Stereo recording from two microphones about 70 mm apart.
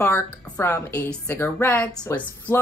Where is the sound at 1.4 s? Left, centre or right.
Left.